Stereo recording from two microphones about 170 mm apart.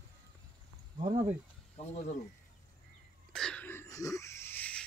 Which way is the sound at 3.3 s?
5° left (ahead or behind).